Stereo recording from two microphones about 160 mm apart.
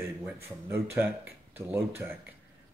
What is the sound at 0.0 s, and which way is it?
Speech, 15° right (ahead or behind).